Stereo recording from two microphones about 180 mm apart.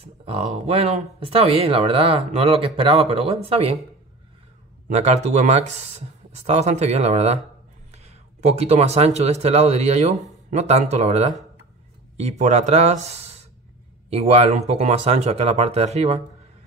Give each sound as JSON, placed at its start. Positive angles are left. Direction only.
{"t": 0.0, "sound": "speech", "side_deg": -35}
{"t": 4.8, "sound": "speech", "side_deg": -40}